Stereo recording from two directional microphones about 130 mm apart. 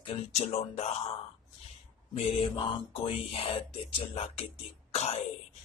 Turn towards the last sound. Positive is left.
turn(degrees=55)  # may be behind; listen again after turning